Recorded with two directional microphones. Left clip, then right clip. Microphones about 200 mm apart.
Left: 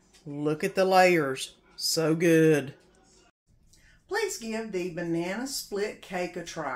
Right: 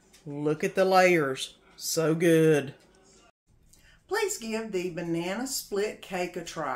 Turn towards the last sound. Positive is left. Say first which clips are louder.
# right 1 dB
turn(degrees=-5)  # may be behind; listen again after turning